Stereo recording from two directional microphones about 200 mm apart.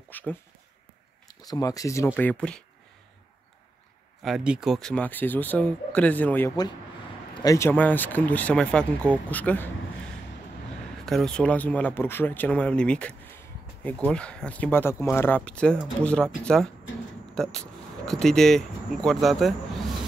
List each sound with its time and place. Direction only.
0.1 s speech: 10° left (ahead or behind)
1.5 s speech: 15° left (ahead or behind)
4.2 s speech: 5° right (ahead or behind)
11.1 s speech: centre (ahead or behind)